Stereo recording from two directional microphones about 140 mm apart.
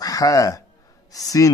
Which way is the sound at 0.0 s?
25° left (ahead or behind).